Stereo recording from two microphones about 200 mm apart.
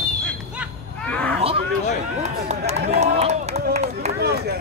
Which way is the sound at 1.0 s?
5° left (ahead or behind).